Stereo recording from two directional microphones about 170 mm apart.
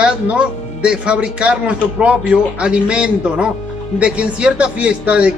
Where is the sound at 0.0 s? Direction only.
5° right (ahead or behind).